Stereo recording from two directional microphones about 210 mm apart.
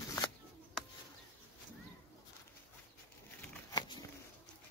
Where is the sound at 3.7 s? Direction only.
20° left (ahead or behind).